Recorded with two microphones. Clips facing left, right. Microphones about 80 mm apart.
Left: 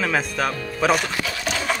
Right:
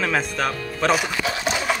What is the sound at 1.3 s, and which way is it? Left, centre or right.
Horse, right.